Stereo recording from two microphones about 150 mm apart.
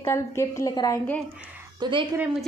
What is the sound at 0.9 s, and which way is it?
Speech, 10° left (ahead or behind).